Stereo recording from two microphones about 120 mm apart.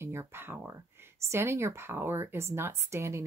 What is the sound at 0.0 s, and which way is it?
Speech, 20° right (ahead or behind).